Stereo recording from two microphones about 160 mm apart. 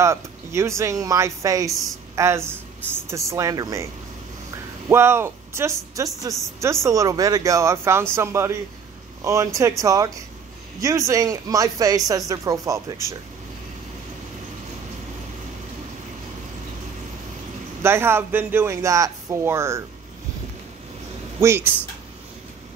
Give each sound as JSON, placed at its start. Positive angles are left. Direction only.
{"t": 0.0, "sound": "speech", "side_deg": -15}
{"t": 17.8, "sound": "speech", "side_deg": -15}
{"t": 21.4, "sound": "speech", "side_deg": -15}